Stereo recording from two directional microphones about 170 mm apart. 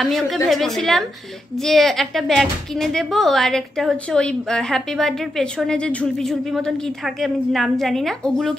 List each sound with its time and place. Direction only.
0.0 s speech: centre (ahead or behind)